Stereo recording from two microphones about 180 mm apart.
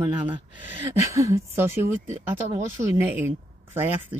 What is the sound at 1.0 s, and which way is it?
Speech, 15° right (ahead or behind).